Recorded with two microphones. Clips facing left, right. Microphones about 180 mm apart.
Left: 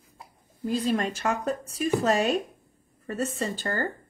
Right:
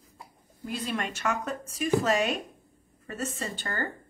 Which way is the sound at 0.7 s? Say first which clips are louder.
Left 6 dB; 35° left (ahead or behind).